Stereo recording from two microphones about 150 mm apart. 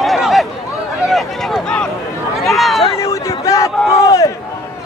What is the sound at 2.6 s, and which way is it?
Run, centre (ahead or behind).